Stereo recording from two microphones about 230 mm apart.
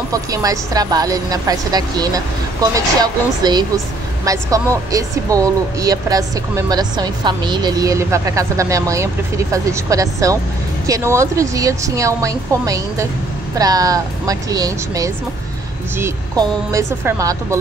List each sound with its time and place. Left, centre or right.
0.1 s speech: centre